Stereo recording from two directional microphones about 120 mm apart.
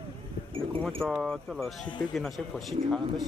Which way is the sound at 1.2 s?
Centre (ahead or behind).